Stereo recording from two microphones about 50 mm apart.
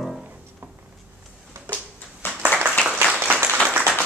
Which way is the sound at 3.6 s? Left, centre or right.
Right.